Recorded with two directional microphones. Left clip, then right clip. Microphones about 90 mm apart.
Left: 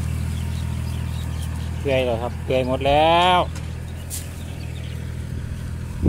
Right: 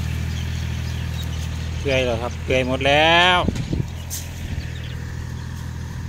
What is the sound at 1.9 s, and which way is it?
Speech, centre (ahead or behind).